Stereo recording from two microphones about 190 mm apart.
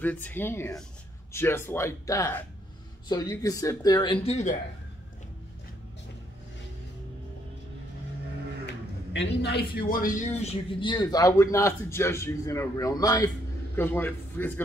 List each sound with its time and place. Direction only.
0.0 s a man's voice: 10° left (ahead or behind); by 4.6 s 35° left (ahead or behind)
9.1 s a man's voice: 65° left (ahead or behind); by 14.5 s 10° left (ahead or behind)